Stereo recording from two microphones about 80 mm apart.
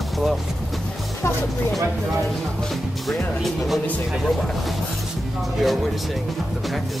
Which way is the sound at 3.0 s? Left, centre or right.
Centre.